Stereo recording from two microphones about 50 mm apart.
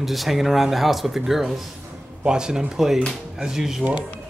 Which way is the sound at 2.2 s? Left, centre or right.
Centre.